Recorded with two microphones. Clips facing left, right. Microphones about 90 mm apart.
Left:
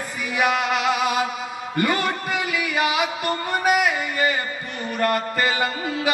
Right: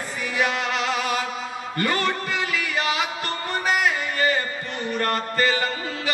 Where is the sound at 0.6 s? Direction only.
35° right (ahead or behind).